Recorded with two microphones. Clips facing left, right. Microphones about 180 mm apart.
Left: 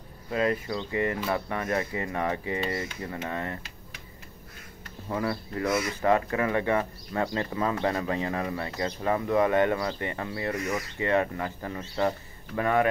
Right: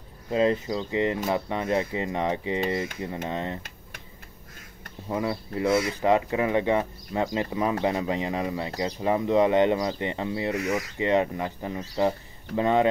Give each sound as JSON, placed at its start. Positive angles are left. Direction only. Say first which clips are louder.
{"t": 0.3, "sound": "speech", "louder": "right 4 dB", "side_deg": -25}
{"t": 5.0, "sound": "speech", "louder": "right 2 dB", "side_deg": -15}